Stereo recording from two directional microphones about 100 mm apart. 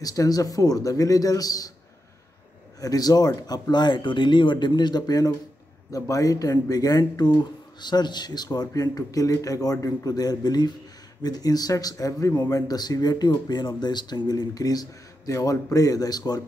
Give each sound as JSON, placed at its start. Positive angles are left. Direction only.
{"t": 0.0, "sound": "speech", "side_deg": 35}
{"t": 2.8, "sound": "speech", "side_deg": 40}